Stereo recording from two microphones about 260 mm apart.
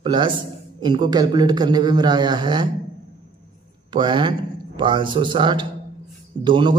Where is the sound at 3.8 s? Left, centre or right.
Centre.